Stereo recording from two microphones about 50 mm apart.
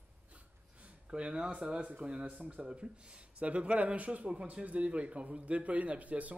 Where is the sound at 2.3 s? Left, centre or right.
Right.